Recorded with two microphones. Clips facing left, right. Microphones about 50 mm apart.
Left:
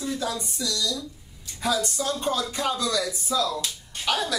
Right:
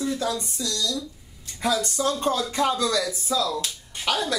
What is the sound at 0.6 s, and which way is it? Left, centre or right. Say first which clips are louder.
Speech: left 1 dB; right.